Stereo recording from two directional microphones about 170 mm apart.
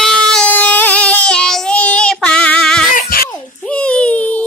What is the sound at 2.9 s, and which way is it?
Music, 55° left (ahead or behind).